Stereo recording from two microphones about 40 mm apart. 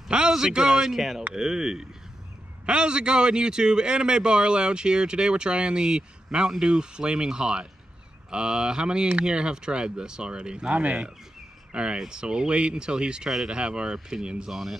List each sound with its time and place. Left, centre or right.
0.3 s speech: centre
0.8 s speech: centre
1.3 s a man's voice: centre
10.8 s a man's voice: right
14.5 s speech: centre